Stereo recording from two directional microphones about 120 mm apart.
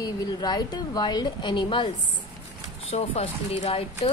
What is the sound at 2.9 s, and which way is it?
Speech, 60° left (ahead or behind).